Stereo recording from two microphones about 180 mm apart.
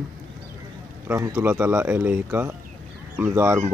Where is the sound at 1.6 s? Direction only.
5° right (ahead or behind).